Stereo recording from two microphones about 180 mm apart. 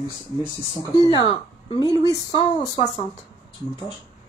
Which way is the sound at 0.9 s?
20° right (ahead or behind).